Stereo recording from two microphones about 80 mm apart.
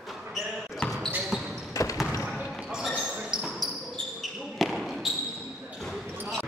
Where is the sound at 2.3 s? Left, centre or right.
Centre.